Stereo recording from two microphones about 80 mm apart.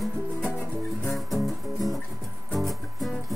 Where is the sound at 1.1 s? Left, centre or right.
Centre.